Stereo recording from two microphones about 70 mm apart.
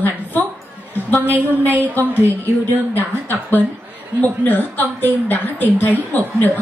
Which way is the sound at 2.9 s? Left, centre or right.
Left.